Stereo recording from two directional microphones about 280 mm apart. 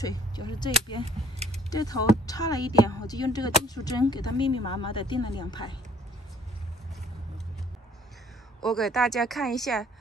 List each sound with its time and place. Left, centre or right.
0.0 s speech: centre
1.0 s a sound: right
1.7 s speech: centre
8.6 s speech: centre